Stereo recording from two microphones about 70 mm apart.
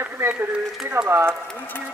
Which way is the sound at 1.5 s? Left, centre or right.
Left.